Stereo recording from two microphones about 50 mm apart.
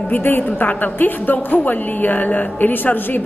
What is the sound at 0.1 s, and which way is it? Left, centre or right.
A woman's voice, left.